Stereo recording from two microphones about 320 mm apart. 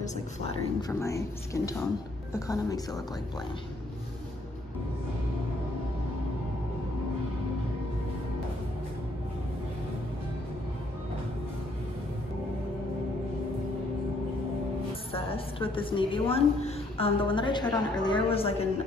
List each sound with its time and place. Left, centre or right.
0.0 s speech: centre
15.1 s a woman's voice: centre